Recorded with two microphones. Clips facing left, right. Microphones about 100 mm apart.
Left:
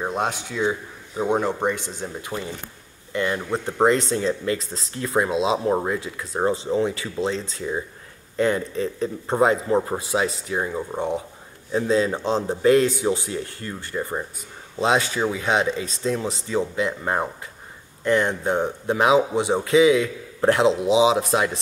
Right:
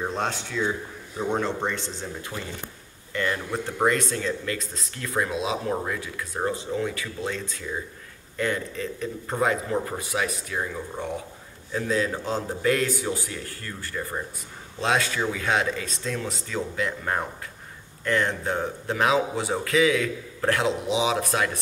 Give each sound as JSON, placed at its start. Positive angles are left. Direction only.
{"t": 0.0, "sound": "speech", "side_deg": 15}